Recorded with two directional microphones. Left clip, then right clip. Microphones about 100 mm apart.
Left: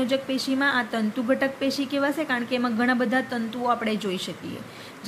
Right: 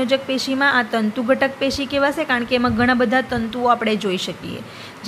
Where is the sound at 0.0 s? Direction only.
20° right (ahead or behind).